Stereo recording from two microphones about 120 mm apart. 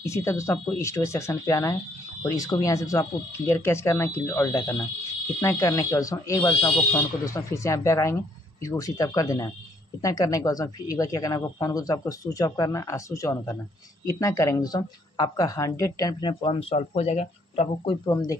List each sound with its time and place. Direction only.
0.0 s speech: 25° left (ahead or behind); by 17.9 s 60° left (ahead or behind)
18.0 s speech: 30° left (ahead or behind)